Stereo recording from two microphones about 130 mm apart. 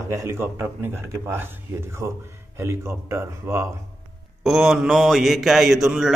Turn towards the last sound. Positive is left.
turn(degrees=0)  # may be behind; listen again after turning